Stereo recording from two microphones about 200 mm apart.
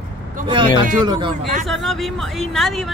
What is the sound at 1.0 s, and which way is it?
Speech, 25° right (ahead or behind).